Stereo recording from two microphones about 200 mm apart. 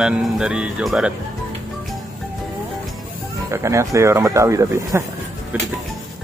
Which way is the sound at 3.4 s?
15° right (ahead or behind).